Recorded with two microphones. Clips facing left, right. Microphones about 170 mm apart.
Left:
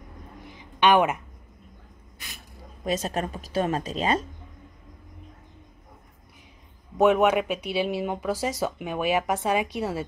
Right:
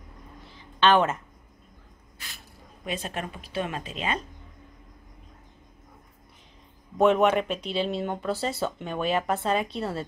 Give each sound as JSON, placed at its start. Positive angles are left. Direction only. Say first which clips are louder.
{"t": 0.5, "sound": "a sound", "louder": "left 1 dB", "side_deg": 15}
{"t": 2.8, "sound": "speech", "louder": "left 5 dB", "side_deg": 40}
{"t": 7.0, "sound": "speech", "louder": "left 1 dB", "side_deg": 5}